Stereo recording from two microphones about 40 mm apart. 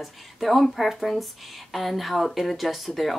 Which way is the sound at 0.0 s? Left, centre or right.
Centre.